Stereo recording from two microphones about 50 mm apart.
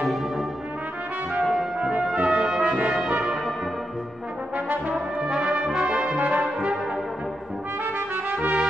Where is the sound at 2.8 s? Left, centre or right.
Centre.